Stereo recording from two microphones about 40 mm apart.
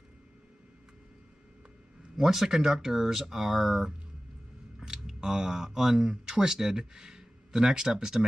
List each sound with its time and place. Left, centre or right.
2.1 s speech: centre